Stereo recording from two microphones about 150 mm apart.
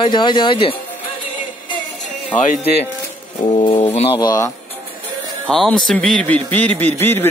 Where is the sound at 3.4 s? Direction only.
40° left (ahead or behind).